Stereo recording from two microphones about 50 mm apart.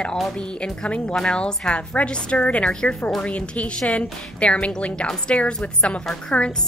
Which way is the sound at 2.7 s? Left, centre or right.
Centre.